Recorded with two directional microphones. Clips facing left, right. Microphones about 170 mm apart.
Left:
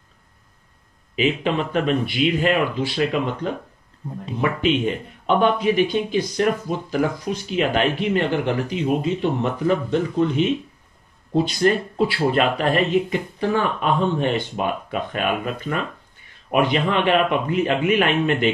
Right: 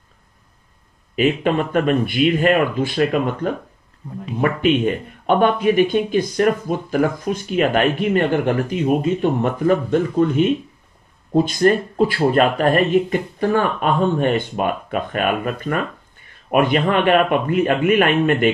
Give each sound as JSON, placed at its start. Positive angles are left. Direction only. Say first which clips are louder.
{"t": 1.1, "sound": "speech", "louder": "right 3 dB", "side_deg": -50}